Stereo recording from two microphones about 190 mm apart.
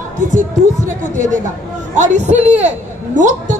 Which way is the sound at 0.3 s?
40° right (ahead or behind).